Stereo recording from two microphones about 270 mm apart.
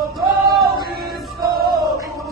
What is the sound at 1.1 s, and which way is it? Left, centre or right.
Music, right.